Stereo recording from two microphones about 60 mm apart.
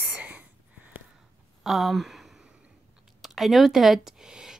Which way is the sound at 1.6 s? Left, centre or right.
Centre.